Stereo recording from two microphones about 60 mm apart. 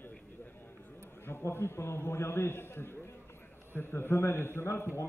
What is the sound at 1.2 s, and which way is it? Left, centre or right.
A man's voice, left.